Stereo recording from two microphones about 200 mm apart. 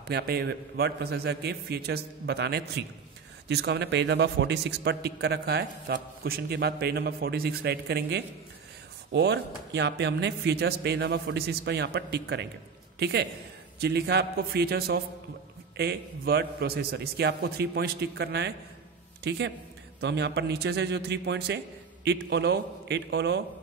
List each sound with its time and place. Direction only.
0.1 s a man's voice: 55° right (ahead or behind)